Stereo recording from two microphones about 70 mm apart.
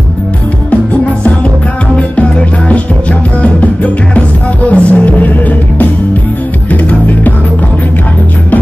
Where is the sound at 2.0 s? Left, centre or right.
Centre.